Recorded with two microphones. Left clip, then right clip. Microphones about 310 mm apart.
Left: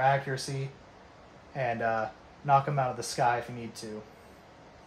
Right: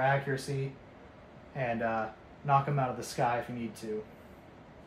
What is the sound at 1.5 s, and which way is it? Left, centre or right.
Speech, left.